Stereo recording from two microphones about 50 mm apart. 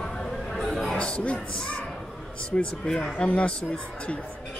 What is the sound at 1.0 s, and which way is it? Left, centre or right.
Speech, left.